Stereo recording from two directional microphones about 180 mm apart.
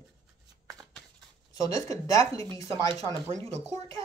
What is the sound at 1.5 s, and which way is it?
Speech, 20° left (ahead or behind).